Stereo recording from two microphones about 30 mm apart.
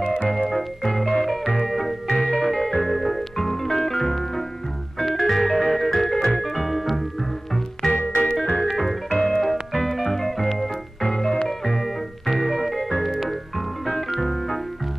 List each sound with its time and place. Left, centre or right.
0.3 s music: centre
5.0 s organ: centre
7.9 s organ: left
9.1 s music: centre
11.1 s music: centre